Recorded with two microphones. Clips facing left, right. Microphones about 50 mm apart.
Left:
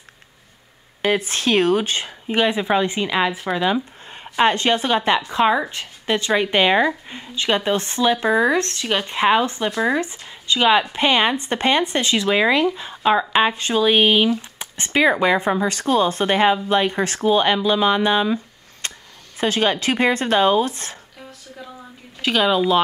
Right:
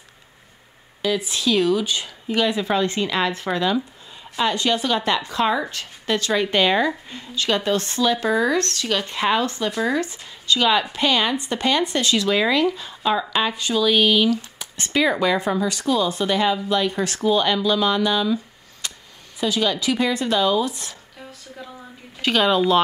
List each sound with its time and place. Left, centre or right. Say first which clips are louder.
1.0 s speech: left 2 dB; left; by 3.6 s centre
4.1 s speech: left 5 dB; left
21.3 s a sound: even; centre